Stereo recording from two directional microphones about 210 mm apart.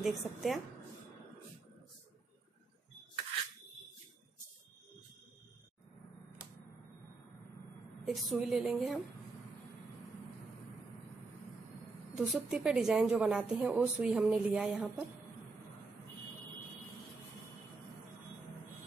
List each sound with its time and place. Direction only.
0.0 s a woman's voice: centre (ahead or behind)
8.0 s a woman's voice: centre (ahead or behind)
12.2 s a woman's voice: centre (ahead or behind)